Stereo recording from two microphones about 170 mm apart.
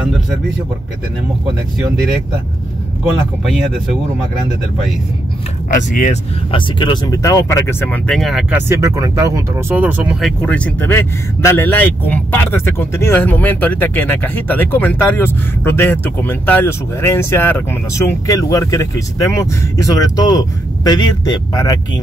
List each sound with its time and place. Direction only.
3.4 s speech: centre (ahead or behind)
5.7 s speech: 50° left (ahead or behind)
6.5 s speech: 25° left (ahead or behind); by 10.3 s 10° right (ahead or behind)
10.4 s a man's voice: 5° left (ahead or behind); by 22.0 s 25° left (ahead or behind)